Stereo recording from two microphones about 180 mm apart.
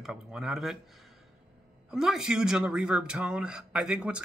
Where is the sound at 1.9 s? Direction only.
5° right (ahead or behind).